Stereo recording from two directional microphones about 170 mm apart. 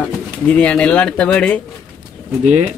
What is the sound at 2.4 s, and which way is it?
Speech, 40° right (ahead or behind).